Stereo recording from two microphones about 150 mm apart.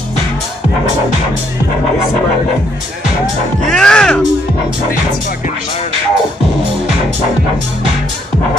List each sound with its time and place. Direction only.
3.7 s speech: 5° left (ahead or behind)